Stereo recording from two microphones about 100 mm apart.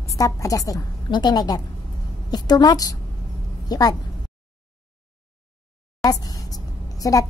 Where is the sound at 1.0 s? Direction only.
45° left (ahead or behind).